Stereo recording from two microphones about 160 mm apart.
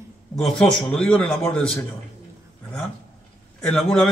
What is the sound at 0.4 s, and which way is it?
A man's voice, 5° left (ahead or behind).